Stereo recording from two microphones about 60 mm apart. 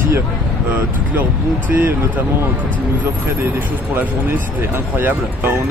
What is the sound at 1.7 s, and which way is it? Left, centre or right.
Speech, right.